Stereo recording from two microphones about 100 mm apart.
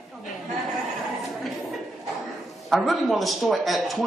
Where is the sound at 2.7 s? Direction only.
Centre (ahead or behind).